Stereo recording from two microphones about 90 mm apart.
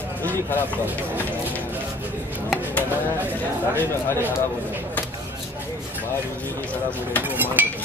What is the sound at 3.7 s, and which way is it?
Speech, 25° left (ahead or behind).